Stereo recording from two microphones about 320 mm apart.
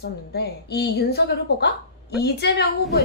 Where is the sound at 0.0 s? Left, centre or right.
Left.